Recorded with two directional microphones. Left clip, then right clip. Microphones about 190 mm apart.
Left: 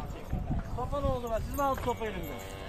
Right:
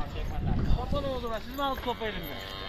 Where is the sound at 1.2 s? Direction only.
30° right (ahead or behind).